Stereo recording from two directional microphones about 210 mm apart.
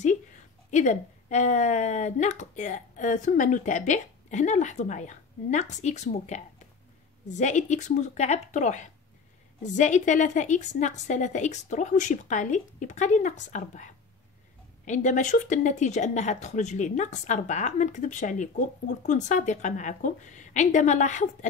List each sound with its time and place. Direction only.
0.7 s speech: 35° left (ahead or behind)
14.9 s speech: 35° left (ahead or behind)